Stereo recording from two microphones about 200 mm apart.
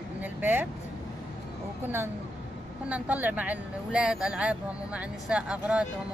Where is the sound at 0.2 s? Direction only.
10° right (ahead or behind).